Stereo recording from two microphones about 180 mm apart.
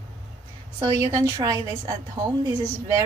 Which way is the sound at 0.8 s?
20° right (ahead or behind).